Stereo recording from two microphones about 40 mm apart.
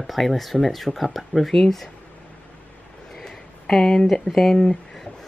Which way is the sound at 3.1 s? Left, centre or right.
Centre.